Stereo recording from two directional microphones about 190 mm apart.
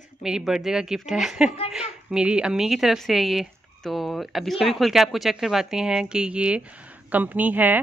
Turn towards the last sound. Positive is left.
turn(degrees=-10)  # may be behind; listen again after turning